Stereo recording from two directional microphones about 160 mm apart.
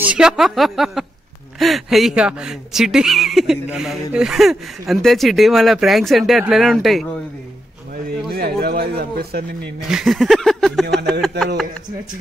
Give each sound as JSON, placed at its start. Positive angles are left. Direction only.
{"t": 0.0, "sound": "speech", "side_deg": -5}
{"t": 8.3, "sound": "speech", "side_deg": -75}
{"t": 9.8, "sound": "speech", "side_deg": 0}